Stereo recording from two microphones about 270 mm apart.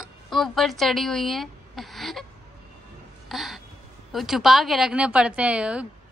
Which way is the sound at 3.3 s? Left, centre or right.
Centre.